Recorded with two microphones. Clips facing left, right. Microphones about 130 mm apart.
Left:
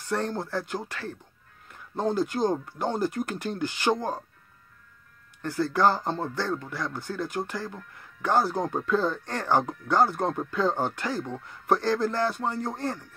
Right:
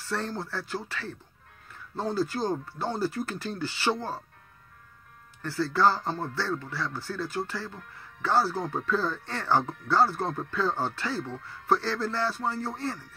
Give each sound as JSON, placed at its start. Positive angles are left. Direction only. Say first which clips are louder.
{"t": 0.1, "sound": "speech", "louder": "left 4 dB", "side_deg": 20}
{"t": 5.4, "sound": "speech", "louder": "left 1 dB", "side_deg": 20}